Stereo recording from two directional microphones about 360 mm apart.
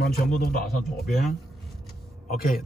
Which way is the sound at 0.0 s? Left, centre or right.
Left.